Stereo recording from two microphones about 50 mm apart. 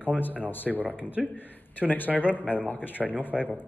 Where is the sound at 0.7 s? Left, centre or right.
Right.